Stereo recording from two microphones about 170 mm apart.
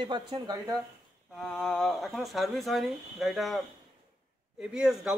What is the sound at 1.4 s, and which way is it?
A man's voice, 5° left (ahead or behind).